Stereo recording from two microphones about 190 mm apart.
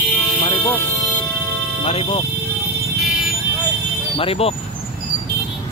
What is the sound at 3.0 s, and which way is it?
Vehicle, centre (ahead or behind).